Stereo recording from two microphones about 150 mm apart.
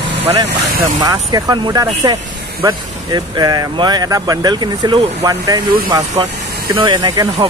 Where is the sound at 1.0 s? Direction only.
25° right (ahead or behind).